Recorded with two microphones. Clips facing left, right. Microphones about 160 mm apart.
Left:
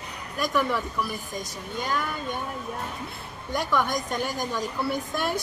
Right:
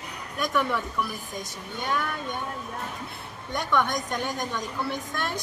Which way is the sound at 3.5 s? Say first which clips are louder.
Even; 5° left (ahead or behind).